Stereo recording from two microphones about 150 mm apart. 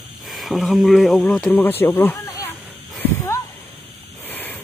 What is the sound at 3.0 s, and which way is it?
Snake, 20° left (ahead or behind).